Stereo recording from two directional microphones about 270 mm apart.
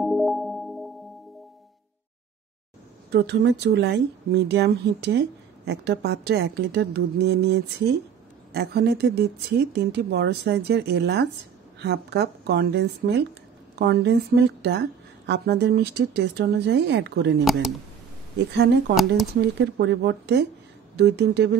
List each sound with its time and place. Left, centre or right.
0.0 s music: centre
3.1 s speech: right
17.5 s speech: centre
19.4 s speech: right